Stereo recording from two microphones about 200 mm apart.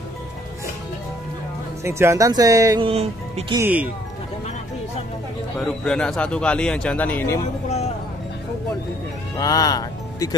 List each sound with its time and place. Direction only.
1.9 s speech: 15° right (ahead or behind)
2.9 s speech: 30° right (ahead or behind)
3.5 s speech: 10° right (ahead or behind)
5.6 s speech: 5° left (ahead or behind)
9.4 s speech: 20° left (ahead or behind)